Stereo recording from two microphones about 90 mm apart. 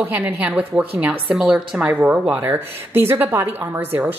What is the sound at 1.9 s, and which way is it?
A woman's voice, 15° right (ahead or behind).